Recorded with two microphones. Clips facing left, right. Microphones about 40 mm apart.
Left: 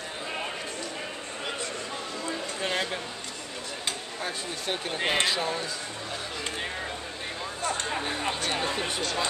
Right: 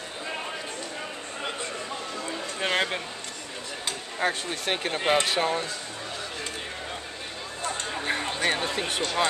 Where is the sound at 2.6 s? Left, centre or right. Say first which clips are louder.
Right 4 dB; right.